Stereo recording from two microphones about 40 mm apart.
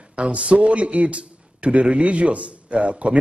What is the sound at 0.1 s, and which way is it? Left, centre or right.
A man's voice, right.